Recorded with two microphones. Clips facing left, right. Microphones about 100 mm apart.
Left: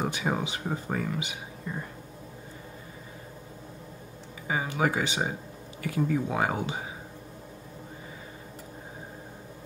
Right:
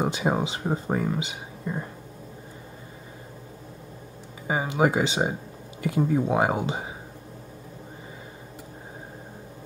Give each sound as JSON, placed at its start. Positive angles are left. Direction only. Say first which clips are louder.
{"t": 0.0, "sound": "speech", "louder": "right 4 dB", "side_deg": -25}
{"t": 4.5, "sound": "speech", "louder": "right 4 dB", "side_deg": -25}